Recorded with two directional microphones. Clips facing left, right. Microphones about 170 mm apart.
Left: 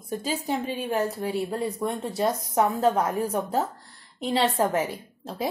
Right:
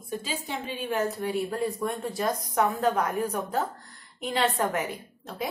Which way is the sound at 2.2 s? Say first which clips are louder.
Left 3 dB; 25° left (ahead or behind).